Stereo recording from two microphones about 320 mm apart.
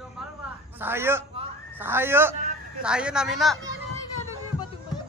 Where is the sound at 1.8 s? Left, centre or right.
Centre.